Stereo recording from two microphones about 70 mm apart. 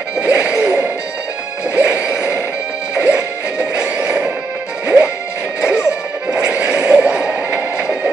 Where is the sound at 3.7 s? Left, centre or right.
Centre.